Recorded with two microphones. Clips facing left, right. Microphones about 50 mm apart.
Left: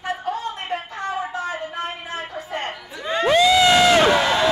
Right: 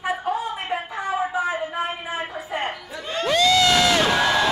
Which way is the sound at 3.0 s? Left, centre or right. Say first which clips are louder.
Left 3 dB; left.